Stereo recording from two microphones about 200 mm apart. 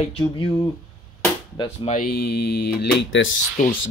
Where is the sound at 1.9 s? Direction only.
50° left (ahead or behind).